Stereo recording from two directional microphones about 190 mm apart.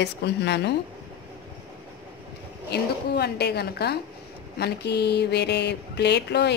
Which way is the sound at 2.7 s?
60° left (ahead or behind).